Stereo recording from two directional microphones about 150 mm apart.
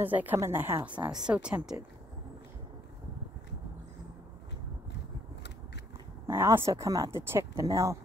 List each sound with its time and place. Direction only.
0.0 s a woman's voice: 10° right (ahead or behind)
6.2 s speech: 15° right (ahead or behind)